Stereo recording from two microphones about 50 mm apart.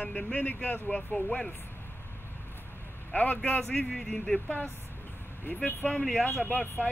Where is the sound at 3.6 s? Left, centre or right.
Centre.